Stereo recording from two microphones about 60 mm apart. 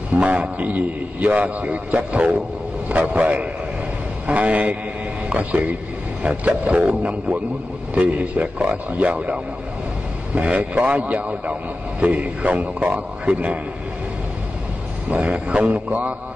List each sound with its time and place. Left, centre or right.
0.1 s a man's voice: right
15.0 s a man's voice: right